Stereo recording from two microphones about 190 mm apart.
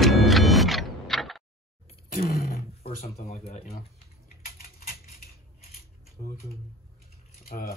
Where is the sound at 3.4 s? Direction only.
35° left (ahead or behind).